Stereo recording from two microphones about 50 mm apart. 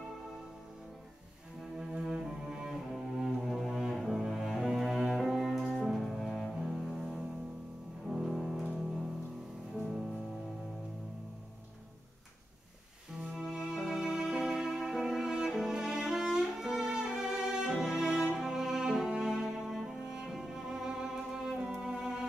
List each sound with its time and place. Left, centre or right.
1.8 s cello: centre
5.1 s music: centre
5.6 s cello: centre
8.1 s music: centre
13.3 s music: centre